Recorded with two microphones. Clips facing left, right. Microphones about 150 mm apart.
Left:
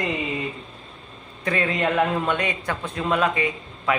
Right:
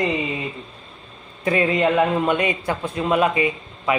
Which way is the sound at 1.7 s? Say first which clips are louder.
Right 2 dB; 5° right (ahead or behind).